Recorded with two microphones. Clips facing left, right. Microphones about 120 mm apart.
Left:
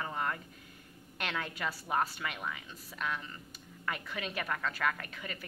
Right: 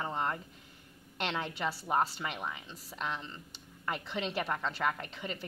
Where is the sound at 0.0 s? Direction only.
25° right (ahead or behind).